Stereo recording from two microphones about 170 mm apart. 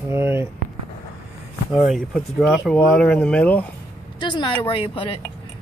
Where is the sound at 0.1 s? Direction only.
15° right (ahead or behind).